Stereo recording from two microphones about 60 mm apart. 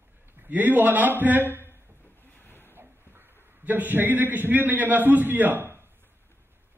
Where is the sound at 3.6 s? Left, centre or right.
Right.